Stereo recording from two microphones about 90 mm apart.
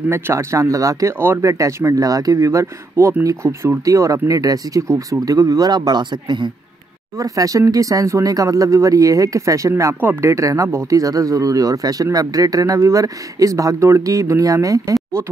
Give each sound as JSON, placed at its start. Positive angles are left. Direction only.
{"t": 0.1, "sound": "speech", "side_deg": -30}
{"t": 7.2, "sound": "speech", "side_deg": -40}